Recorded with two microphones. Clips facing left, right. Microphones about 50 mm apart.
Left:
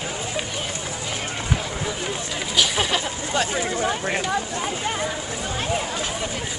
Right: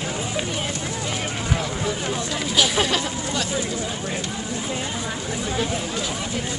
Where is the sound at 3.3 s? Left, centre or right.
Left.